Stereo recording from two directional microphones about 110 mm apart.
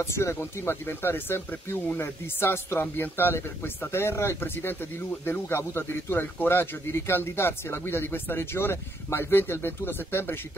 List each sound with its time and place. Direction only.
0.0 s speech: 25° left (ahead or behind)